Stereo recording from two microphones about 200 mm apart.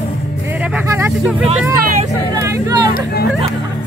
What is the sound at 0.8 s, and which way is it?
Vehicle, 15° right (ahead or behind).